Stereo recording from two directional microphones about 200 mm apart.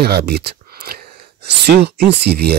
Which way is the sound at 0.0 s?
55° right (ahead or behind).